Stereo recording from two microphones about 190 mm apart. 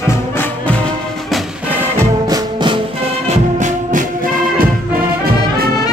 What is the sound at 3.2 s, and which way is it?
Music, 40° right (ahead or behind).